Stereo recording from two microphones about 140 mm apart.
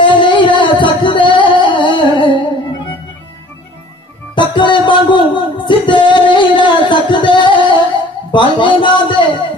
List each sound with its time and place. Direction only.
0.0 s singing: 35° left (ahead or behind)
4.4 s music: 35° left (ahead or behind)
8.3 s a sound: 35° left (ahead or behind)